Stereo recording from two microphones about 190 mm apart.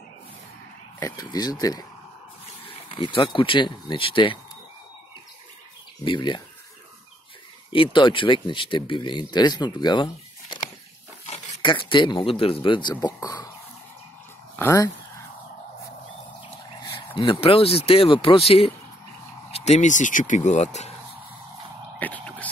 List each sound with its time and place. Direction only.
0.9 s speech: 20° left (ahead or behind)
6.0 s speech: 25° left (ahead or behind)
7.7 s speech: 25° left (ahead or behind)
11.6 s speech: 25° left (ahead or behind)
14.6 s speech: 15° left (ahead or behind)
16.8 s speech: 25° left (ahead or behind)
22.0 s a sound: 10° left (ahead or behind)